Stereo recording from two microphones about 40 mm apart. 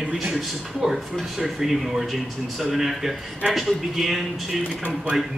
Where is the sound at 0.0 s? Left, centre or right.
Centre.